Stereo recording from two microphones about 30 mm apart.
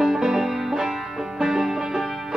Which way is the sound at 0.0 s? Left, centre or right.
Centre.